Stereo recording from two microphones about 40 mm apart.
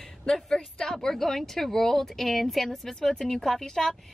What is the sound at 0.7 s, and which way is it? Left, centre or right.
Speech, centre.